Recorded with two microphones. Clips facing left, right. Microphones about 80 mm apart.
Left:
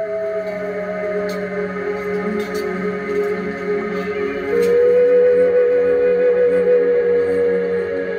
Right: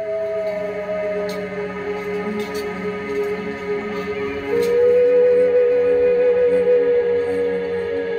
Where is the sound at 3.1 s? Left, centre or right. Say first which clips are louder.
Left 3 dB; left.